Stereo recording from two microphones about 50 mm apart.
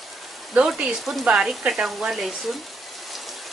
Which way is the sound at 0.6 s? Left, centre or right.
Centre.